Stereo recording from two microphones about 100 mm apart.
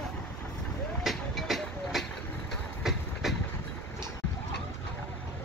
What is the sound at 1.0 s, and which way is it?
Train, centre (ahead or behind).